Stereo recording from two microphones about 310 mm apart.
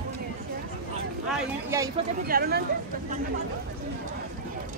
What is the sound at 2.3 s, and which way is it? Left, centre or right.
Speech, right.